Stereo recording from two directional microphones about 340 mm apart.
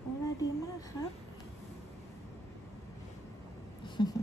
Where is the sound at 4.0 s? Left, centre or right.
Centre.